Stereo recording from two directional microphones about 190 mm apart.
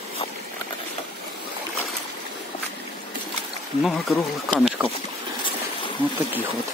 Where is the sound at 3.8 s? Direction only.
Centre (ahead or behind).